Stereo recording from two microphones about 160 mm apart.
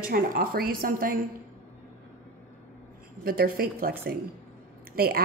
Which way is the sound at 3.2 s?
70° right (ahead or behind).